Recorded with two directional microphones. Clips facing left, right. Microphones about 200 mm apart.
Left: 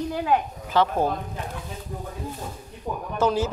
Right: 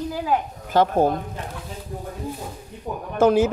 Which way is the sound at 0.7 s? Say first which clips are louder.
Right 4 dB; 45° right (ahead or behind).